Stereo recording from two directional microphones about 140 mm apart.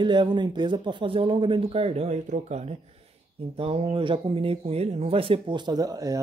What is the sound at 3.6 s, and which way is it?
Speech, 45° right (ahead or behind).